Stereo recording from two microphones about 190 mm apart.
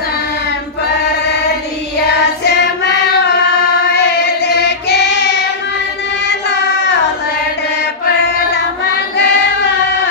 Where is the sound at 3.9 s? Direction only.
60° left (ahead or behind).